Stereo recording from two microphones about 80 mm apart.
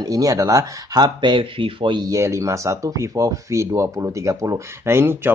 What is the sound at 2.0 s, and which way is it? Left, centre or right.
Speech, right.